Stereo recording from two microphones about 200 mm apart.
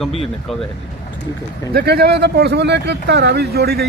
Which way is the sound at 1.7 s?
50° right (ahead or behind).